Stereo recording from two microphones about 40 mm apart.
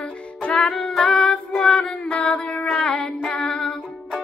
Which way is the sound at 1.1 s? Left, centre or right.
Centre.